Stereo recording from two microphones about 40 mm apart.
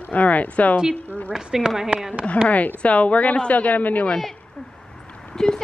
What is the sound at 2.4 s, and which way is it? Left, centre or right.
A woman's voice, left.